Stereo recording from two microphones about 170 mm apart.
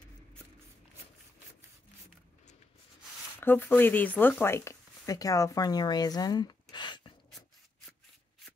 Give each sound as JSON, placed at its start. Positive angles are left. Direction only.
{"t": 3.3, "sound": "speech", "side_deg": 10}